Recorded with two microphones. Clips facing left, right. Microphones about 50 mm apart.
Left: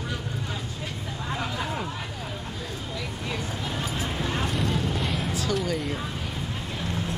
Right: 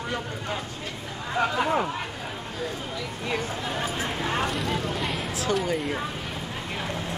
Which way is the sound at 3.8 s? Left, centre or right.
Right.